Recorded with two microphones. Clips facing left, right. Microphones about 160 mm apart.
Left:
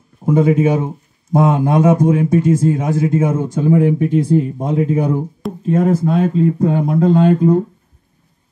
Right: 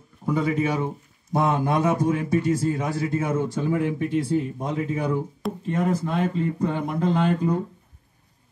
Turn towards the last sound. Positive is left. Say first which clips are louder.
# left 10 dB
turn(degrees=45)  # may be behind; listen again after turning